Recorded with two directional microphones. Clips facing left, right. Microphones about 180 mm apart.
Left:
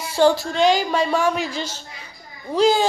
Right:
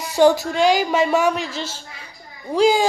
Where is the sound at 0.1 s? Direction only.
15° right (ahead or behind).